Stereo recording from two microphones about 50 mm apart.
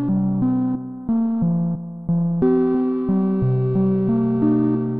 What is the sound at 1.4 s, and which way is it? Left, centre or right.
Music, right.